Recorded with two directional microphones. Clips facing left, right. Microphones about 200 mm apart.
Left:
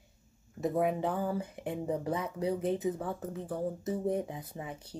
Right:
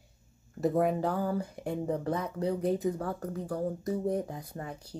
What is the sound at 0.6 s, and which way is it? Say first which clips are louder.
Speech: right 3 dB; centre (ahead or behind).